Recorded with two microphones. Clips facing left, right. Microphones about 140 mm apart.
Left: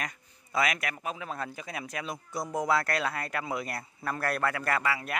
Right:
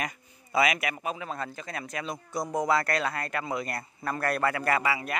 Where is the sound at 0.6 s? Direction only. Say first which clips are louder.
Right 4 dB; 5° right (ahead or behind).